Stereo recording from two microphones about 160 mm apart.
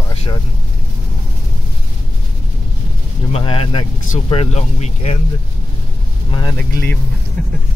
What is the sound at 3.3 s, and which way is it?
Speech, 35° left (ahead or behind).